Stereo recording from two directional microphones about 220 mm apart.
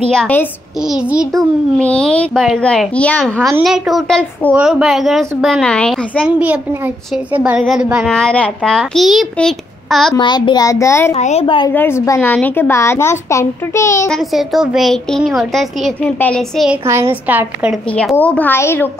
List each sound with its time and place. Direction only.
0.1 s a child's voice: 5° left (ahead or behind)
1.8 s a child's voice: 5° left (ahead or behind)
10.1 s a child's voice: 20° left (ahead or behind)
11.1 s a woman's voice: 30° left (ahead or behind)
11.7 s a child's voice: 10° left (ahead or behind)
14.1 s a child's voice: centre (ahead or behind)
16.8 s a woman's voice: 10° right (ahead or behind)
17.9 s a child's voice: 5° left (ahead or behind)